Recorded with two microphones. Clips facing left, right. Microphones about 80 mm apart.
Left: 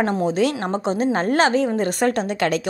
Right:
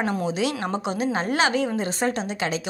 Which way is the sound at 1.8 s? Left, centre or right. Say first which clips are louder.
Left 5 dB; left.